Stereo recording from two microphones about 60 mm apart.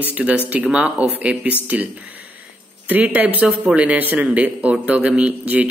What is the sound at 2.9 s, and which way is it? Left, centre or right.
A man's voice, right.